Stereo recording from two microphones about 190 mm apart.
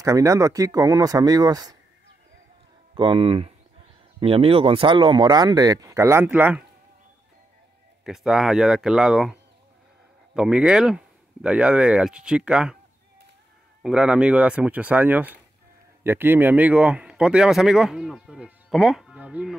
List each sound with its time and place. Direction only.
0.0 s speech: 15° right (ahead or behind)
3.0 s speech: 30° right (ahead or behind); by 6.6 s 10° right (ahead or behind)
8.0 s speech: centre (ahead or behind)
13.8 s speech: 5° right (ahead or behind)